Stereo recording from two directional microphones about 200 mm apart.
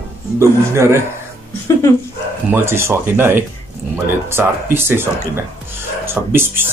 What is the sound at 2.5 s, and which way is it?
Speech, 10° right (ahead or behind).